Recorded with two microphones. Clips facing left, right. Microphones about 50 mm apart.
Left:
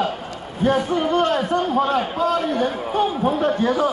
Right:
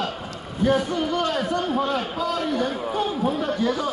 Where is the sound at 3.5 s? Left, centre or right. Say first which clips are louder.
Left 4 dB; left.